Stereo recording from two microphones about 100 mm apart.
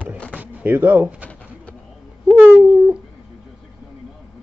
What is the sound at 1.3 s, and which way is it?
Pigeon, 10° left (ahead or behind).